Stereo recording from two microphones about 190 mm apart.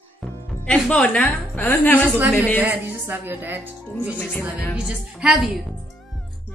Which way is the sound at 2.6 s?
5° right (ahead or behind).